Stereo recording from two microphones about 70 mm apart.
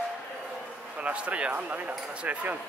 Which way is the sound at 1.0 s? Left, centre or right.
Centre.